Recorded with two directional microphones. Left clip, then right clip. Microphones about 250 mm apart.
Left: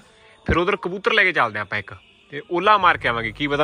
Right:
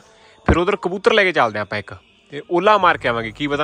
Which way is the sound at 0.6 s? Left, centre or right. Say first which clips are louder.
Right 2 dB; centre.